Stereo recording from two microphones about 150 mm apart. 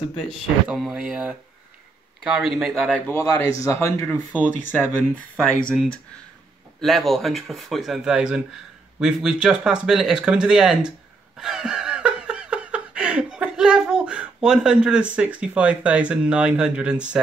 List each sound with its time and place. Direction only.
0.3 s speech: centre (ahead or behind)
3.1 s speech: 15° left (ahead or behind); by 10.9 s 5° right (ahead or behind)
11.3 s laughter: 5° right (ahead or behind)